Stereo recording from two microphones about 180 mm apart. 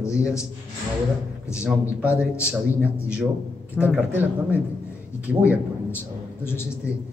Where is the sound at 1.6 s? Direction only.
5° right (ahead or behind).